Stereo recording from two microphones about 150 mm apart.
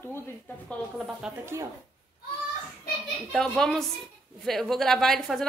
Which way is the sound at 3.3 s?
5° left (ahead or behind).